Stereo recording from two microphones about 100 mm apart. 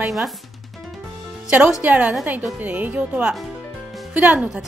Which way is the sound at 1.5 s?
10° right (ahead or behind).